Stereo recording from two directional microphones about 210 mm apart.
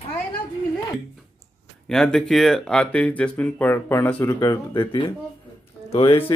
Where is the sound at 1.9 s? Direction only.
Centre (ahead or behind).